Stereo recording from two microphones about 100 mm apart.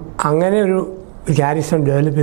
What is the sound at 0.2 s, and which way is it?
A man's voice, 15° right (ahead or behind).